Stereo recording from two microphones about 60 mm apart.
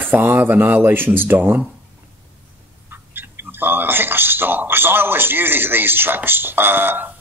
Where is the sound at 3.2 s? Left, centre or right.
Right.